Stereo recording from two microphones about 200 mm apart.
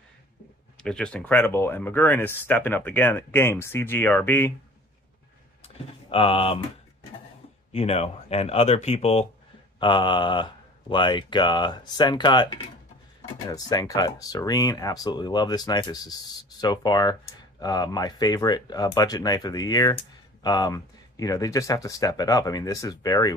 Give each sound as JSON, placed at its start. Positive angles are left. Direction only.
{"t": 0.8, "sound": "speech", "side_deg": 5}
{"t": 5.6, "sound": "a sound", "side_deg": 30}
{"t": 7.7, "sound": "speech", "side_deg": 30}